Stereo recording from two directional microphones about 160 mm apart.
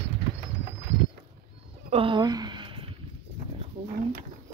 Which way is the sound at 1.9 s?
30° right (ahead or behind).